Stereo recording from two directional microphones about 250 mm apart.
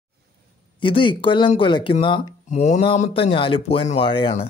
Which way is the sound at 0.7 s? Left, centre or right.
Centre.